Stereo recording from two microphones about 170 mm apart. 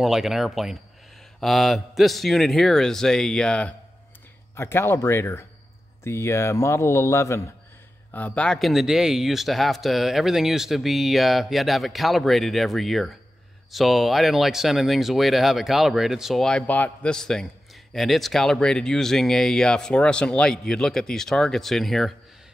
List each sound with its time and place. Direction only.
0.0 s speech: 5° right (ahead or behind)